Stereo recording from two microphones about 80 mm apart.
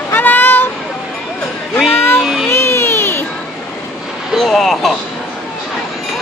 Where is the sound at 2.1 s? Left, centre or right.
Centre.